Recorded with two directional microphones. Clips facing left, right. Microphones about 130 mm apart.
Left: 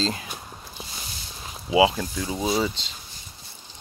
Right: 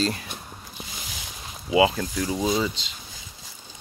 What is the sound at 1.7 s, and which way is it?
Speech, 25° left (ahead or behind).